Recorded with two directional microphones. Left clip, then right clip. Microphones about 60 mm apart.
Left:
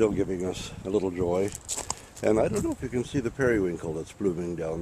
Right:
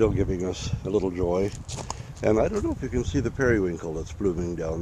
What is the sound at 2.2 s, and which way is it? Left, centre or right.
Speech, centre.